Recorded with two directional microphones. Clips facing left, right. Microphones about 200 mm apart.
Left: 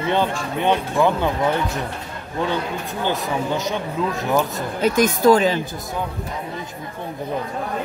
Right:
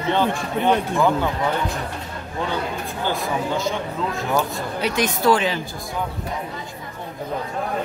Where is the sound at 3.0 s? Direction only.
20° left (ahead or behind).